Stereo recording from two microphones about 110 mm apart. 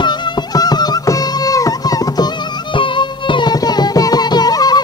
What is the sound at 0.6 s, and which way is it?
Music, 35° left (ahead or behind).